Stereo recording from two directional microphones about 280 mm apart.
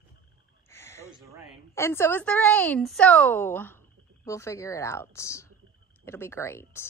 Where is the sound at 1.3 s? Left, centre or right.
Centre.